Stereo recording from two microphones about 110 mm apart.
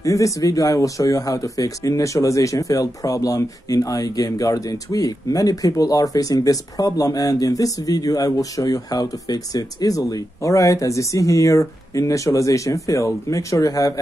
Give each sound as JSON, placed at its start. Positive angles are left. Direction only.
{"t": 0.0, "sound": "speech", "side_deg": 30}